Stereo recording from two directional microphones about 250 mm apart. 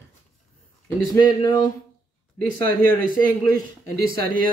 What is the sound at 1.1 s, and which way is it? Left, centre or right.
Speech, centre.